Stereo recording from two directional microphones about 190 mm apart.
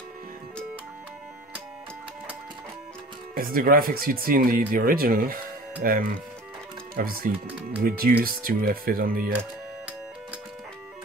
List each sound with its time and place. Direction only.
3.3 s speech: 50° right (ahead or behind)